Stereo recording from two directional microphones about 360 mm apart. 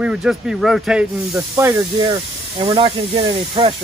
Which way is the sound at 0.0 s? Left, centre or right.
Centre.